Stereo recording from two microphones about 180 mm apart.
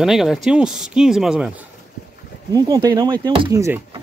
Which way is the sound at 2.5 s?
20° right (ahead or behind).